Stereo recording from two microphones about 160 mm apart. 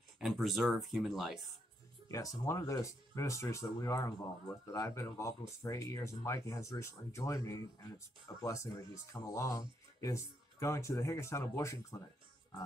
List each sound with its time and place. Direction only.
0.2 s speech: centre (ahead or behind)
2.0 s speech: 20° left (ahead or behind)